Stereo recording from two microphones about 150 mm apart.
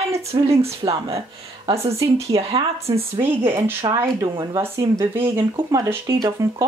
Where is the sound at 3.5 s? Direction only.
15° right (ahead or behind).